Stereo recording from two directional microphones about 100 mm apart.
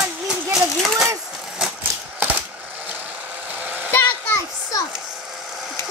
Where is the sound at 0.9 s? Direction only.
35° right (ahead or behind).